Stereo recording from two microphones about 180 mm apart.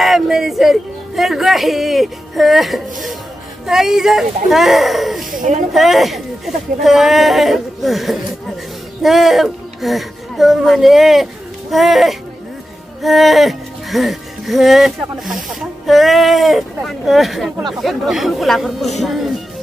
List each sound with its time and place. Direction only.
0.0 s speech: centre (ahead or behind)
5.3 s speech: 45° right (ahead or behind)
5.7 s speech: centre (ahead or behind)